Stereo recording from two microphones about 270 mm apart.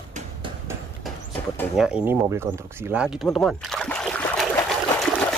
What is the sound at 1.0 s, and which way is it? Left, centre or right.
Speech, centre.